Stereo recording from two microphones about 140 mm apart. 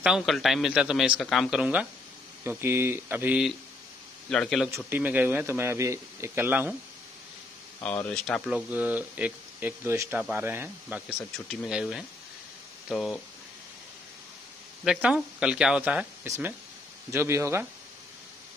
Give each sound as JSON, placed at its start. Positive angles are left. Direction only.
{"t": 0.0, "sound": "a man's voice", "side_deg": -5}
{"t": 4.3, "sound": "a man's voice", "side_deg": 0}
{"t": 4.8, "sound": "speech", "side_deg": -15}
{"t": 7.8, "sound": "a man's voice", "side_deg": 10}
{"t": 8.5, "sound": "a man's voice", "side_deg": -10}
{"t": 14.9, "sound": "speech", "side_deg": -10}